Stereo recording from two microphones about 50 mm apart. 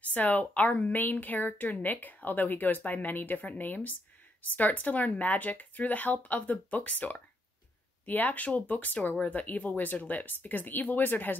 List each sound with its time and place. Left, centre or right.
0.1 s a woman's voice: left